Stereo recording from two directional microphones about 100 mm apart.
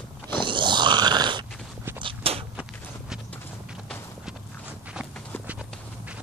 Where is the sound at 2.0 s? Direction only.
65° right (ahead or behind).